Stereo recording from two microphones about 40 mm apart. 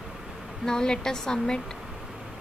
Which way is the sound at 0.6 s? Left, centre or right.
Centre.